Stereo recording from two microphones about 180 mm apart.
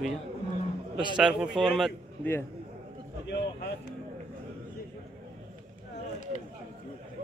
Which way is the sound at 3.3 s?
65° left (ahead or behind).